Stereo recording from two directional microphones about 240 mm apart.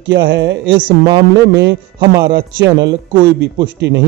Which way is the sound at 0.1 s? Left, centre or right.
Right.